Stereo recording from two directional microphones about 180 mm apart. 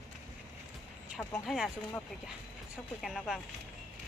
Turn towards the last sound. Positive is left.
turn(degrees=0)  # may be behind; listen again after turning